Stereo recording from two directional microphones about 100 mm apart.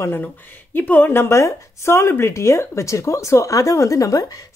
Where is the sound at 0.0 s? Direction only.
20° left (ahead or behind).